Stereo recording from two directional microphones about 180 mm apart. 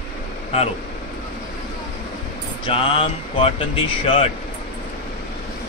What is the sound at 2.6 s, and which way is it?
Speech, 30° left (ahead or behind).